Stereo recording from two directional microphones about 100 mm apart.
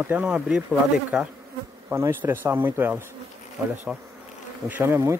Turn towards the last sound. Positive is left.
turn(degrees=-20)  # may be behind; listen again after turning